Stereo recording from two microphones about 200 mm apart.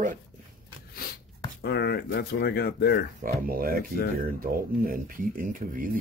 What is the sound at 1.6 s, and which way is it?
Speech, 50° left (ahead or behind).